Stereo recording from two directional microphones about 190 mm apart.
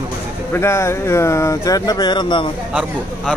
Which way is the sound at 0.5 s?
15° left (ahead or behind).